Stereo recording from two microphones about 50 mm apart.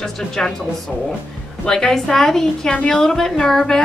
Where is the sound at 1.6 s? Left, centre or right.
Centre.